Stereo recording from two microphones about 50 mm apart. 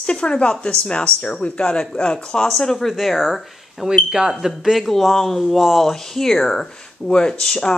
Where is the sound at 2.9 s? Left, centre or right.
Centre.